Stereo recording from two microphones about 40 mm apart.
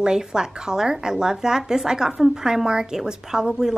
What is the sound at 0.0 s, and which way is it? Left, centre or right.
A woman's voice, centre.